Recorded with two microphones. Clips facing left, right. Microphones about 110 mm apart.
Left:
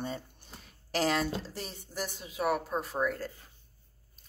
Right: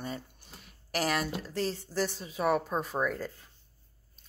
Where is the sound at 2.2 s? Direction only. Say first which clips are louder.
Even; 5° left (ahead or behind).